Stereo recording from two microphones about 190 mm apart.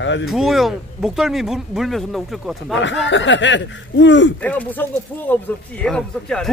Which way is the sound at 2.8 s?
75° left (ahead or behind).